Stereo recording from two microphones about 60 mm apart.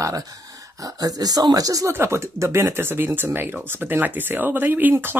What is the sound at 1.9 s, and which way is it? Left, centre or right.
Speech, right.